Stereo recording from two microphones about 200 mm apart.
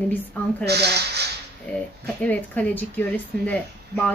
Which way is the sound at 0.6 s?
55° right (ahead or behind).